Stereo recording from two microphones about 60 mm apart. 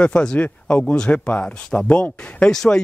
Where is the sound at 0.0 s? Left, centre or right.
Centre.